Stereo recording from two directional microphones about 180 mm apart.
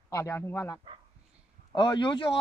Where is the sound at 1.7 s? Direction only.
25° left (ahead or behind).